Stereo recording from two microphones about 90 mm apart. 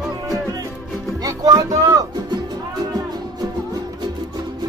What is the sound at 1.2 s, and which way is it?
Music, 40° right (ahead or behind).